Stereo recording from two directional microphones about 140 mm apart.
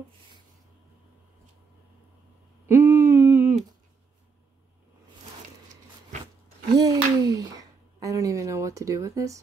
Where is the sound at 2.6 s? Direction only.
15° right (ahead or behind).